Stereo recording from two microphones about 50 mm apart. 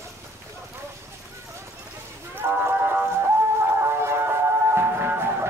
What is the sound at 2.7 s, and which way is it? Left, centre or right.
Music, right.